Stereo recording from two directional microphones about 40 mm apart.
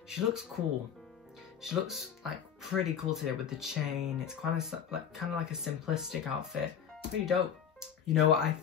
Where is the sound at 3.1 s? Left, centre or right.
Centre.